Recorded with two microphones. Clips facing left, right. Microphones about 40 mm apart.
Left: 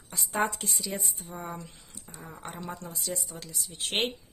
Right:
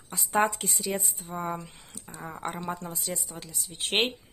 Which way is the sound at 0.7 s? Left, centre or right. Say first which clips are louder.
Right 4 dB; right.